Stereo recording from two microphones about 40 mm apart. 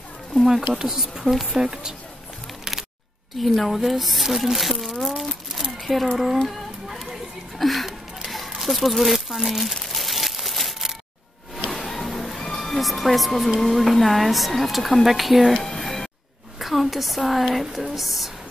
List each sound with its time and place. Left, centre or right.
0.5 s speech: centre
1.6 s speech: centre
3.3 s speech: centre
5.0 s crumpling: centre
5.9 s speech: centre
6.9 s a sound: centre
8.5 s speech: centre
9.8 s crumpling: centre
11.8 s music: centre
13.6 s speech: centre
15.6 s music: centre
16.5 s a woman's voice: centre